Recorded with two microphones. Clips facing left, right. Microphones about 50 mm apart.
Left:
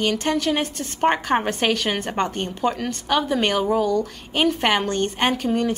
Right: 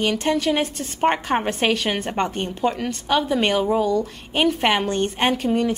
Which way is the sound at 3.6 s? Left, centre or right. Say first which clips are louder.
Even; right.